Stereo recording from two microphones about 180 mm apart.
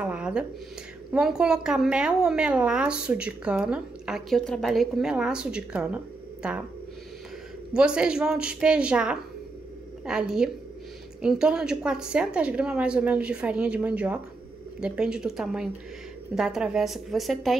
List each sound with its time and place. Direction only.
0.0 s a sound: 5° right (ahead or behind)
1.1 s a woman's voice: 5° right (ahead or behind)
7.7 s a woman's voice: 5° right (ahead or behind)